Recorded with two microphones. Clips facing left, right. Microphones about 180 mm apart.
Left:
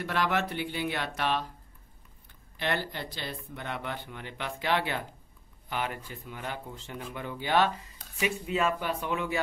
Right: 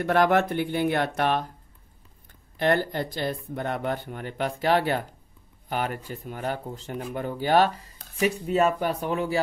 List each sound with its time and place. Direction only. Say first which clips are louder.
0.0 s speech: right 8 dB; 50° right (ahead or behind)
2.5 s speech: right 9 dB; 45° right (ahead or behind)